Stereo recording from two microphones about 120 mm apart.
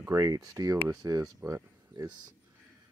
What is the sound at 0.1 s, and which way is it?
Speech, 30° right (ahead or behind).